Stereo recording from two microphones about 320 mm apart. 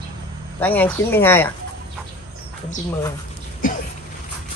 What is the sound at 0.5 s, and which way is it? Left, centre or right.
Speech, centre.